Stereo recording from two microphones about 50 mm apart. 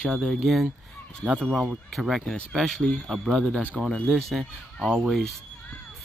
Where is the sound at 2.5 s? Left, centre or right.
Centre.